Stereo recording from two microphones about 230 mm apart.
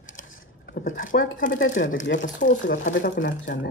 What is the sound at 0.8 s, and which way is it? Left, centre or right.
Speech, left.